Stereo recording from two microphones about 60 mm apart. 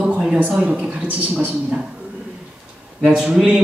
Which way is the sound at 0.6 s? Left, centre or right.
Centre.